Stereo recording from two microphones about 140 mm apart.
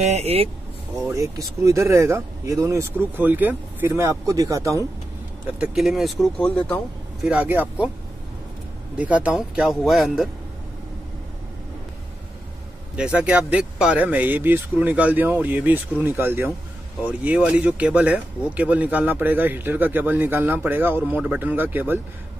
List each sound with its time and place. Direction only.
0.0 s speech: 50° right (ahead or behind)
1.0 s speech: 20° right (ahead or behind)
5.6 s speech: 5° right (ahead or behind)
7.2 s speech: 10° right (ahead or behind)
8.9 s speech: 10° right (ahead or behind)
12.9 s speech: 10° right (ahead or behind)